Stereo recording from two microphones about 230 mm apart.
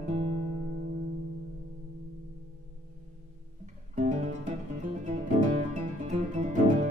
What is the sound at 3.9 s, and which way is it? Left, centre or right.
Guitar, right.